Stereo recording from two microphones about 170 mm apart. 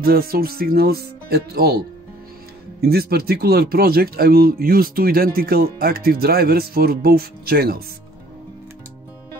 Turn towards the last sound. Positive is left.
turn(degrees=-65)  # may be behind; listen again after turning